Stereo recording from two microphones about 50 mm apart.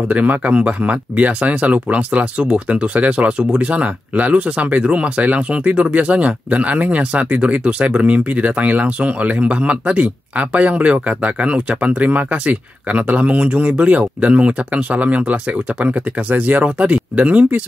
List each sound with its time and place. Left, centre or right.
0.1 s speech: right